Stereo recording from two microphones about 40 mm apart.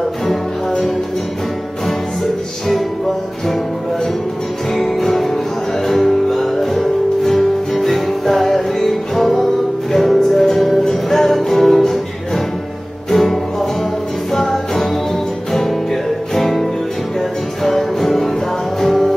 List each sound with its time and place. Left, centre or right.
0.3 s music: centre
4.7 s music: centre
13.1 s music: centre
15.5 s music: centre
17.6 s music: centre